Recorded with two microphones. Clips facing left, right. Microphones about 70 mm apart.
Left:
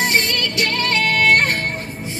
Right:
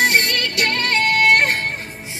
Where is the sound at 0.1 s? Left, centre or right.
Right.